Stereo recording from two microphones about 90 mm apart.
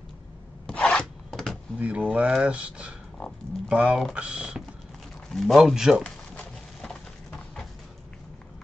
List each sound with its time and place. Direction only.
0.7 s filing: 10° left (ahead or behind)
1.3 s door: centre (ahead or behind)
1.8 s speech: 15° right (ahead or behind)
5.3 s a man's voice: centre (ahead or behind)
6.0 s a sound: 10° left (ahead or behind)